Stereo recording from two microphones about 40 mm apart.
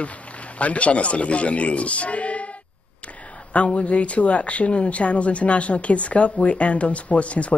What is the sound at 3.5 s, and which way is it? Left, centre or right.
Speech, left.